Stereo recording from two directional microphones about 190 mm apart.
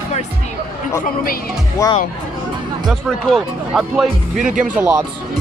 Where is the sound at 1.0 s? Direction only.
50° left (ahead or behind).